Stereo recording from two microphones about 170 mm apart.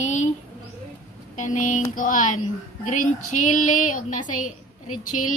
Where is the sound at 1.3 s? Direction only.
45° left (ahead or behind).